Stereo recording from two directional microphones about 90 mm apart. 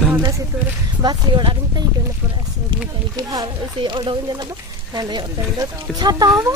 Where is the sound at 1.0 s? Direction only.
50° right (ahead or behind).